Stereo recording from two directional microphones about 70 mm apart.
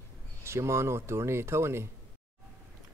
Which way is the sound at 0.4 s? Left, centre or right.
Right.